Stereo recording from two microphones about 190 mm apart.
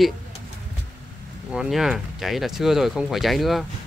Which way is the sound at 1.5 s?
5° right (ahead or behind).